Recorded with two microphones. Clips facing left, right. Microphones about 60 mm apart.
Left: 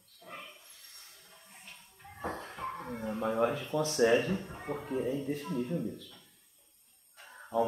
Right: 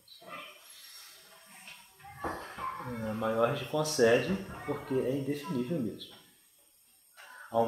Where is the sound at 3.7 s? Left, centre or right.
Centre.